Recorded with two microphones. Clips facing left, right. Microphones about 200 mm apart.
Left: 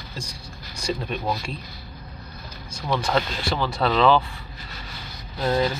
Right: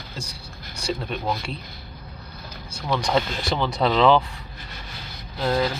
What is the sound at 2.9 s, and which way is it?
Speech, 5° left (ahead or behind).